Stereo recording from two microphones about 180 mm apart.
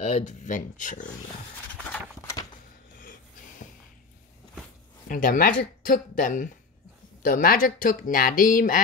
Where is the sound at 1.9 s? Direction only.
15° left (ahead or behind).